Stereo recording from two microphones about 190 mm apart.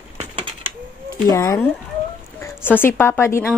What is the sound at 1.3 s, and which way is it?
A woman's voice, 15° left (ahead or behind).